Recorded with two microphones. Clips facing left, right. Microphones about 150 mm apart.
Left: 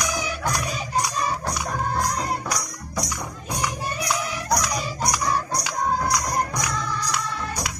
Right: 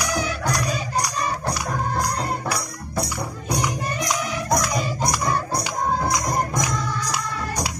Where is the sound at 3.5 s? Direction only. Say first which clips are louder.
Right 2 dB; 15° right (ahead or behind).